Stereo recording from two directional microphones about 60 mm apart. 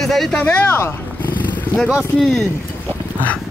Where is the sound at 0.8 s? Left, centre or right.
Left.